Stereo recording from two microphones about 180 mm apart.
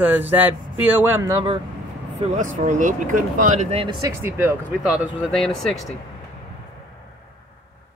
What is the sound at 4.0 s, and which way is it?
Speech, 15° right (ahead or behind).